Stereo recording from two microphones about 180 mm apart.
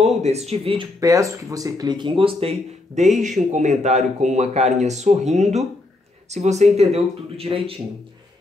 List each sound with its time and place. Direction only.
0.0 s speech: 35° right (ahead or behind)
1.0 s speech: 20° right (ahead or behind)